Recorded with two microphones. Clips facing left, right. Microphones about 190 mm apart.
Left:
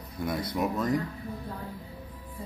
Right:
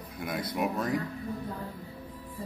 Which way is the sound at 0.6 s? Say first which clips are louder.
Left 2 dB; 10° right (ahead or behind).